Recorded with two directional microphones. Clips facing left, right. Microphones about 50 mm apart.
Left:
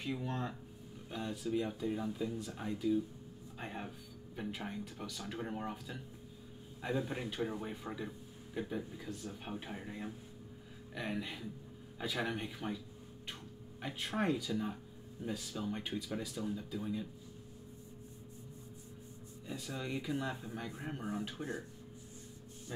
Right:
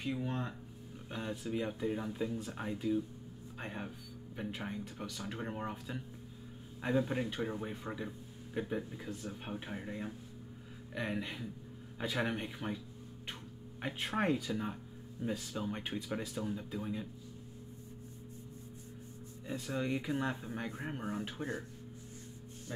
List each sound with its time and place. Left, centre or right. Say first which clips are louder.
0.2 s speech: right 1 dB; centre
3.5 s speech: right 1 dB; centre
8.5 s speech: right 2 dB; centre
19.4 s speech: right 5 dB; right
20.7 s speech: right 1 dB; right